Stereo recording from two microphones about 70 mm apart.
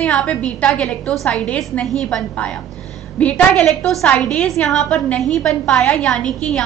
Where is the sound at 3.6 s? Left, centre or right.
Centre.